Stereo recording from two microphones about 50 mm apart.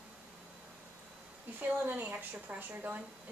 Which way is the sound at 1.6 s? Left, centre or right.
Right.